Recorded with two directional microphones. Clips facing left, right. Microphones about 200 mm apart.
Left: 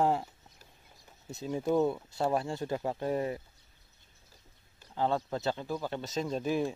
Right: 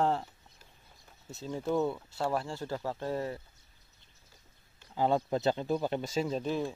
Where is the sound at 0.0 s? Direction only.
15° left (ahead or behind).